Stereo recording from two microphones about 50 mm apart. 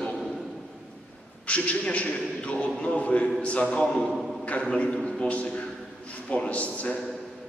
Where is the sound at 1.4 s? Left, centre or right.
Left.